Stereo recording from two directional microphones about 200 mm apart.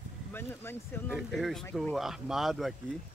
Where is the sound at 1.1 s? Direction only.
Centre (ahead or behind).